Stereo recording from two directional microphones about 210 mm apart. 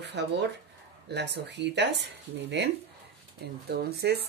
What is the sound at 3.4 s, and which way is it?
Speech, 50° right (ahead or behind).